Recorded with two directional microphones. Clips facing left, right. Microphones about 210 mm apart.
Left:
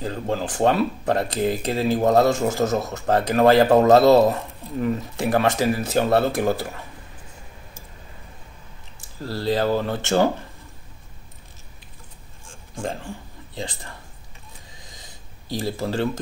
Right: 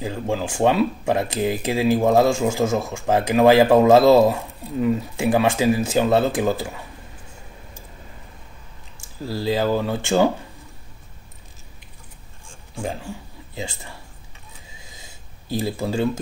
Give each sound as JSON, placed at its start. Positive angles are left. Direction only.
{"t": 0.0, "sound": "speech", "side_deg": -10}
{"t": 6.3, "sound": "speech", "side_deg": 0}
{"t": 9.2, "sound": "speech", "side_deg": -10}
{"t": 12.7, "sound": "speech", "side_deg": -5}
{"t": 15.8, "sound": "speech", "side_deg": -15}